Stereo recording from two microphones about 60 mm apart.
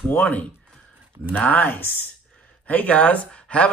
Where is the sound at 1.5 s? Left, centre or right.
Left.